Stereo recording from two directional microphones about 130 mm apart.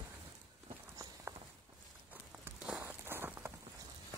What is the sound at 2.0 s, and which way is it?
Walk, 15° right (ahead or behind).